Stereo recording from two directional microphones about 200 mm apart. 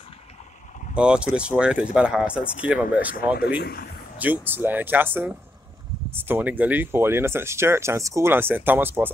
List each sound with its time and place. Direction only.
0.9 s speech: 5° right (ahead or behind)
3.3 s speech: 55° left (ahead or behind)
4.2 s speech: 10° right (ahead or behind)